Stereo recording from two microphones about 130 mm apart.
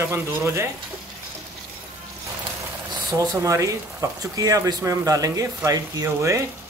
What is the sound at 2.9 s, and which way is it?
Speech, 30° right (ahead or behind).